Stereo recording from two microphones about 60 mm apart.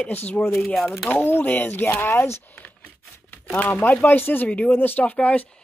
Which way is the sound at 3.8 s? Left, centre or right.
Left.